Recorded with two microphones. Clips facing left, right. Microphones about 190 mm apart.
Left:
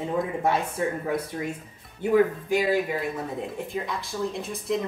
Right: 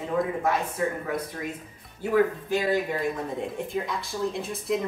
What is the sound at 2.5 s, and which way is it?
Speech, 10° left (ahead or behind).